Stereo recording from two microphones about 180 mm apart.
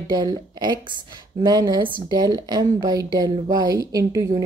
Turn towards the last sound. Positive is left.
turn(degrees=-20)  # may be behind; listen again after turning